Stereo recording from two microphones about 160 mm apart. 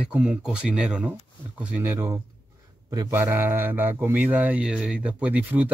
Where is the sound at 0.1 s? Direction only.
5° right (ahead or behind).